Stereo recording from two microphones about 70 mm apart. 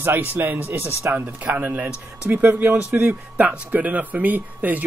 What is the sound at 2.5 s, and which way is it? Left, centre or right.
Speech, right.